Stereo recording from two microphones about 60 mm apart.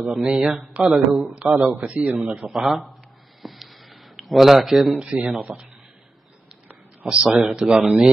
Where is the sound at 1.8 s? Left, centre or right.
Right.